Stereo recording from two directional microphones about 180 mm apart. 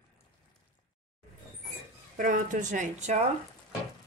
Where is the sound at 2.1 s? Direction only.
45° right (ahead or behind).